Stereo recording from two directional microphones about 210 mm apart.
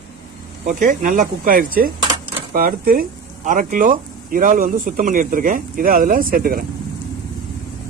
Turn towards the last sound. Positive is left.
turn(degrees=-45)  # may be behind; listen again after turning